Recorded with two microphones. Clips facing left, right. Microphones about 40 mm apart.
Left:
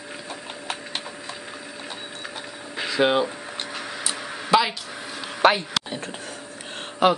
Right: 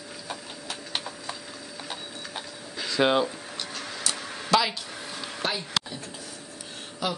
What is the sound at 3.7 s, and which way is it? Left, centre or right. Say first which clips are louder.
Tick-tock: left 1 dB; centre.